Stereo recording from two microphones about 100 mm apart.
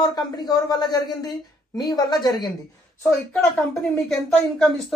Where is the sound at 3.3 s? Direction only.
10° left (ahead or behind).